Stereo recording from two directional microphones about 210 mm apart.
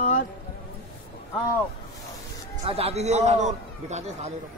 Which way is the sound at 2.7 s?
30° right (ahead or behind).